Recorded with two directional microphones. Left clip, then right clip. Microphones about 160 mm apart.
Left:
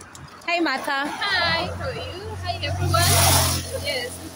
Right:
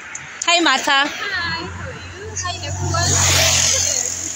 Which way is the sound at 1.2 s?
45° left (ahead or behind).